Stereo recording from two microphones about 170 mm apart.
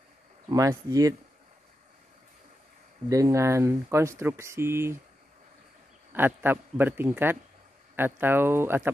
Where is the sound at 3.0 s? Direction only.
20° right (ahead or behind).